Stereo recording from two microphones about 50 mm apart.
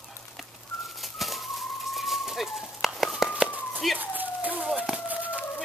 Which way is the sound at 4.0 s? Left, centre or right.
Right.